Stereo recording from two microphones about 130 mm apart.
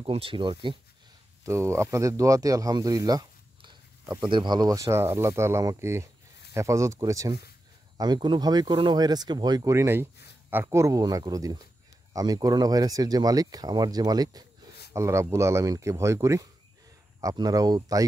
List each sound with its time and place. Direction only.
0.0 s speech: 45° right (ahead or behind)
1.4 s speech: 20° right (ahead or behind)